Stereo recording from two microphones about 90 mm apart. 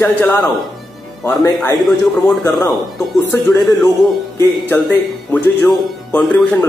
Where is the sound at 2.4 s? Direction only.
40° left (ahead or behind).